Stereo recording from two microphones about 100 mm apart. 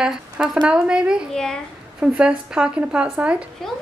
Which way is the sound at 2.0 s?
10° right (ahead or behind).